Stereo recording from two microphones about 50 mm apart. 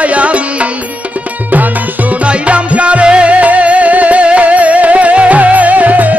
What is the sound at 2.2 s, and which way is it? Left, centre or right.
Music, right.